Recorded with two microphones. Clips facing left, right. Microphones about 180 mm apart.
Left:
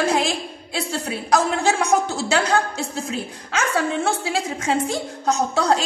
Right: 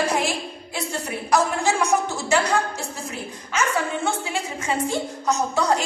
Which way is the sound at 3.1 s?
85° left.